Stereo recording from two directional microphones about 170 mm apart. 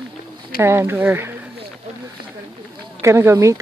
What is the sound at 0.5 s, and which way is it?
Speech, 15° right (ahead or behind).